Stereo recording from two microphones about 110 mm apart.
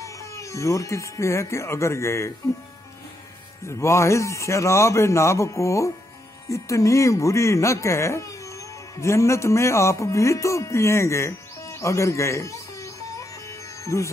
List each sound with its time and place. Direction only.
0.0 s speech: 30° left (ahead or behind)
3.6 s a man's voice: 25° left (ahead or behind)